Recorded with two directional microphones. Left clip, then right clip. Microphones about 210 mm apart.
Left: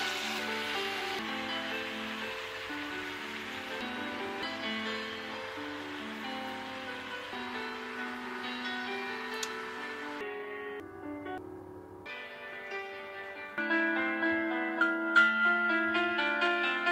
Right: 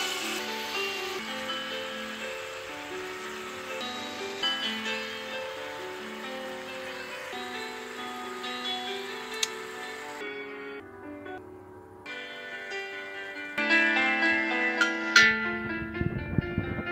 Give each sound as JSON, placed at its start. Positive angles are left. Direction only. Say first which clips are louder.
{"t": 13.6, "sound": "music", "louder": "right 6 dB", "side_deg": -40}